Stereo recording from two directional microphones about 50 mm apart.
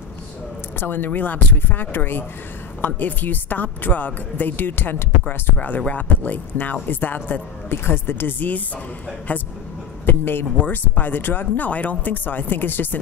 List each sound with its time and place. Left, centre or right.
0.7 s speech: left
7.7 s a man's voice: left